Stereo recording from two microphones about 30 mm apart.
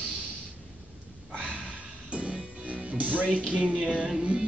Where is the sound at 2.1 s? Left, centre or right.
Right.